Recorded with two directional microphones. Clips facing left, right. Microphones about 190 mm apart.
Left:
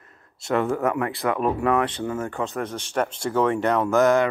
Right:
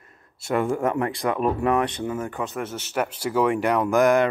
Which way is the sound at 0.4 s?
10° right (ahead or behind).